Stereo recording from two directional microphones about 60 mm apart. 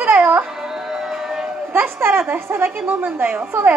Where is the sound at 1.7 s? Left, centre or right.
Right.